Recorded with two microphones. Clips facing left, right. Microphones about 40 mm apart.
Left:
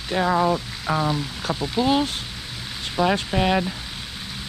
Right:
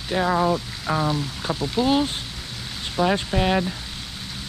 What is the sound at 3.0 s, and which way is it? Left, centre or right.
Speech, left.